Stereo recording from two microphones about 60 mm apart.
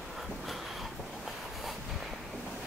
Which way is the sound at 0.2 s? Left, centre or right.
Centre.